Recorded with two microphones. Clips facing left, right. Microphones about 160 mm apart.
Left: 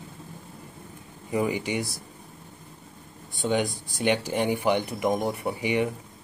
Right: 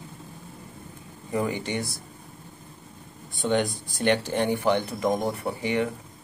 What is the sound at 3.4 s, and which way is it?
Speech, 10° left (ahead or behind).